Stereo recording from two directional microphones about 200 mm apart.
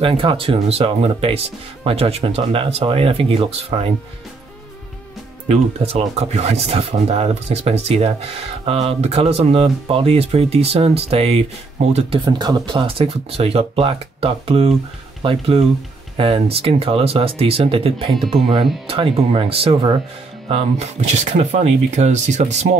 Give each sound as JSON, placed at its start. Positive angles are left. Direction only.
{"t": 0.0, "sound": "speech", "side_deg": -25}
{"t": 5.5, "sound": "speech", "side_deg": -30}